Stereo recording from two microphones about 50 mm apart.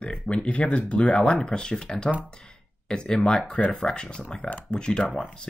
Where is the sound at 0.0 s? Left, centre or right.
Left.